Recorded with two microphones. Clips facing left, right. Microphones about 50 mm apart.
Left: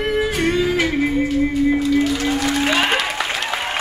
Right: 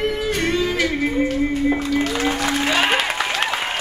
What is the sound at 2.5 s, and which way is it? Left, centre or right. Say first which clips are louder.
Music: even; centre.